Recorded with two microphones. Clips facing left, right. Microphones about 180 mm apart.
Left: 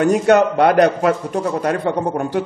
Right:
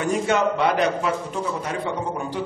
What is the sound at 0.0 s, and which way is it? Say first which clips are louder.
A man's voice: left 8 dB; 65° left (ahead or behind).